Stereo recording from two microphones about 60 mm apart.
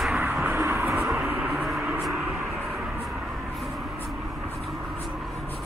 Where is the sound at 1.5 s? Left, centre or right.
Centre.